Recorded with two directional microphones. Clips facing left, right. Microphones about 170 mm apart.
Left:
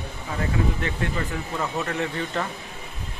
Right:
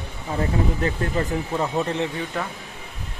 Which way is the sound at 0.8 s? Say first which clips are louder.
Right 4 dB; 35° right (ahead or behind).